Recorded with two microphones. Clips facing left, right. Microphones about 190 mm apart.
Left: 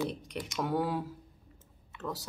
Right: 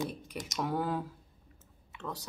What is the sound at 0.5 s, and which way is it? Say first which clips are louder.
Speech: left 1 dB; centre (ahead or behind).